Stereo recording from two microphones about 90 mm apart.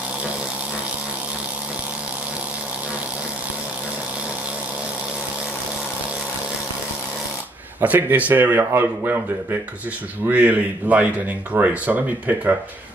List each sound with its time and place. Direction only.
7.8 s a man's voice: 20° right (ahead or behind)